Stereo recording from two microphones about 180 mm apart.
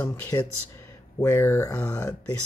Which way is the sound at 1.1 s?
15° left (ahead or behind).